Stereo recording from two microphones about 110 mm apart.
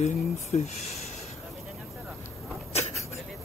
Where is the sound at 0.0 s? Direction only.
90° left.